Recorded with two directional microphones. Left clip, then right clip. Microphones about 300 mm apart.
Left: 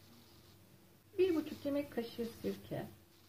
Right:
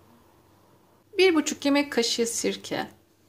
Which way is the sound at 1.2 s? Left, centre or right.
Right.